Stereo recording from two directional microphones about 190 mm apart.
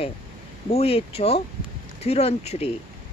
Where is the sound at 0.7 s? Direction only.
30° left (ahead or behind).